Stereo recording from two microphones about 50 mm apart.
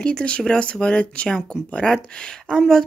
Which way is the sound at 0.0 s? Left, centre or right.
Left.